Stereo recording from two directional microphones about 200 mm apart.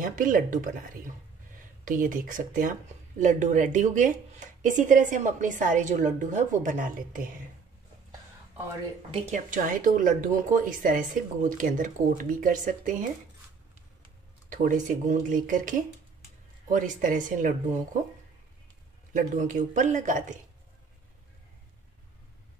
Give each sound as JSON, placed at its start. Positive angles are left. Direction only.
{"t": 0.0, "sound": "speech", "side_deg": -45}
{"t": 1.9, "sound": "speech", "side_deg": -40}
{"t": 9.3, "sound": "speech", "side_deg": -40}
{"t": 14.5, "sound": "speech", "side_deg": -40}
{"t": 19.1, "sound": "speech", "side_deg": -40}